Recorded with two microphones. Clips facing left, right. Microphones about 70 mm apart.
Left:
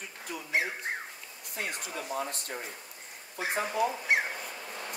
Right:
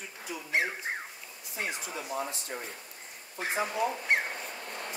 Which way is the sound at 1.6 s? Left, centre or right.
Left.